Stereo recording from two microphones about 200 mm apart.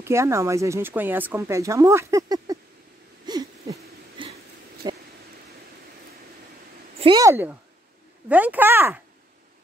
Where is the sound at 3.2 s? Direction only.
20° right (ahead or behind).